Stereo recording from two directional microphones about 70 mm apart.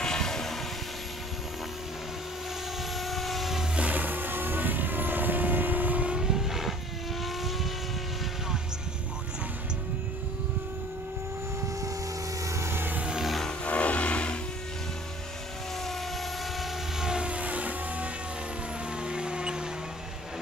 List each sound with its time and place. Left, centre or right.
0.0 s vehicle: centre
3.0 s vehicle: centre
3.7 s vehicle: right
6.1 s vehicle: centre
12.4 s vehicle: right
13.2 s music: centre
13.7 s vehicle: centre
16.5 s vehicle: centre
19.0 s music: centre